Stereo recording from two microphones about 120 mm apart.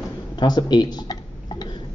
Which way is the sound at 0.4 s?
40° left (ahead or behind).